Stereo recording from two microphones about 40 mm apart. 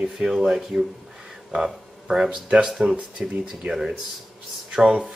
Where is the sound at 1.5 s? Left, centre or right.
Right.